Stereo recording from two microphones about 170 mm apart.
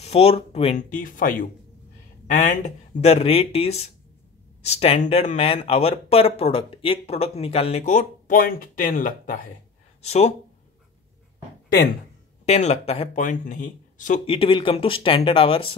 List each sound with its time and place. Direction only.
0.0 s speech: 35° left (ahead or behind); by 1.5 s 55° left (ahead or behind)
2.3 s speech: 45° left (ahead or behind)
10.0 s speech: 40° left (ahead or behind)
12.4 s speech: 40° left (ahead or behind)
14.2 s speech: 30° left (ahead or behind)